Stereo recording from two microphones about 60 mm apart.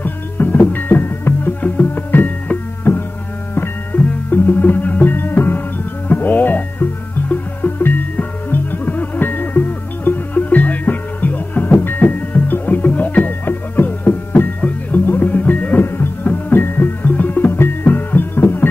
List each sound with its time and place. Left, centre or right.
0.0 s music: left
2.9 s music: left